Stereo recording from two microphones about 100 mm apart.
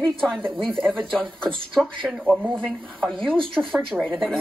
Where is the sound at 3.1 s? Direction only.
60° right (ahead or behind).